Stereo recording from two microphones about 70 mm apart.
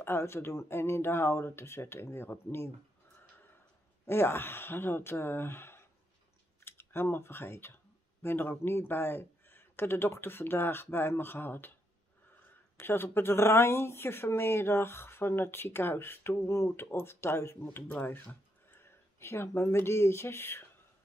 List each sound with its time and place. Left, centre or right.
0.0 s speech: left
4.0 s speech: left
17.8 s speech: left